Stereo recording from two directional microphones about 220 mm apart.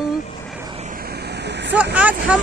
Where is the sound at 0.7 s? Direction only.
30° right (ahead or behind); by 1.8 s 50° right (ahead or behind).